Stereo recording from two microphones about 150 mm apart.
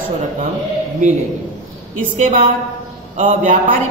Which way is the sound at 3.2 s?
45° right (ahead or behind).